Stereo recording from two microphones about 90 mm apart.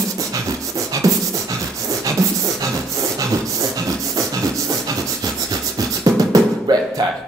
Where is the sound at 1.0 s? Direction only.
40° right (ahead or behind).